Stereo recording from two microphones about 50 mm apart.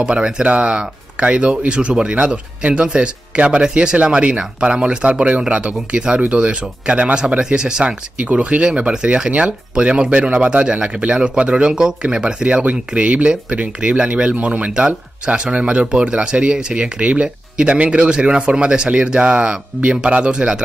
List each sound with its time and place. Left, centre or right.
0.0 s speech: centre